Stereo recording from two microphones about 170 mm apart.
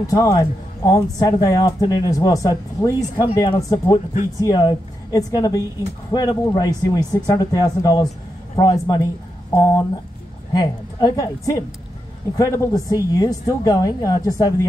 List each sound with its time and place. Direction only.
0.0 s speech: 20° left (ahead or behind)